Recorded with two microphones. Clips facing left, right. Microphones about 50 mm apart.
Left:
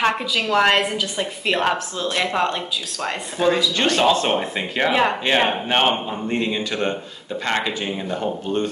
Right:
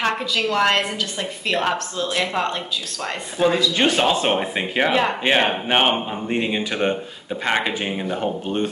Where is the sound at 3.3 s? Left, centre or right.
Centre.